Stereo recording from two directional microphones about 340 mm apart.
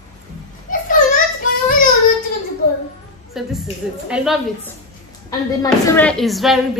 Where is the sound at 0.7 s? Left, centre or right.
Left.